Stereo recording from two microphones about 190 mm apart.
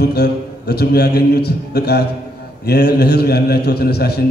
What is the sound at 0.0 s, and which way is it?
A man's voice, 60° left (ahead or behind).